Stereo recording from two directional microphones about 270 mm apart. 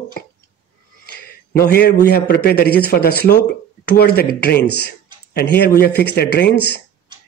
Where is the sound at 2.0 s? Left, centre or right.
Left.